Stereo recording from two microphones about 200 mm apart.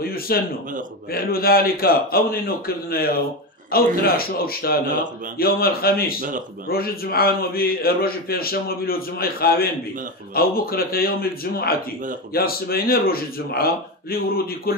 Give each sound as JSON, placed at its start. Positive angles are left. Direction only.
{"t": 0.0, "sound": "a man's voice", "side_deg": 50}